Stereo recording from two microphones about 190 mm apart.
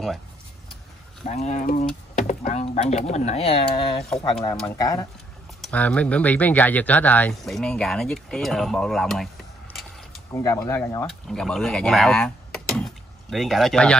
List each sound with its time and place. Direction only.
1.2 s speech: 35° left (ahead or behind)
4.7 s speech: 20° left (ahead or behind)
5.6 s speech: 5° left (ahead or behind)
10.3 s speech: 15° left (ahead or behind)